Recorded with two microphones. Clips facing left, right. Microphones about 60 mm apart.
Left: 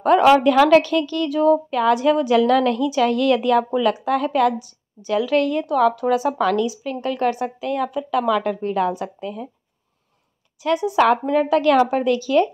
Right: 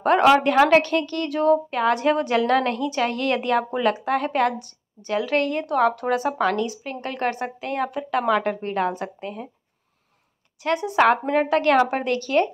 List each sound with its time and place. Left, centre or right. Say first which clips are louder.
0.4 s a woman's voice: left 3 dB; right
1.7 s a woman's voice: left 3 dB; right
2.0 s a woman's voice: left 4 dB; right
4.6 s a woman's voice: left 3 dB; right
5.1 s a woman's voice: left 4 dB; right
6.3 s a woman's voice: left 3 dB; right
10.6 s a woman's voice: left 2 dB; right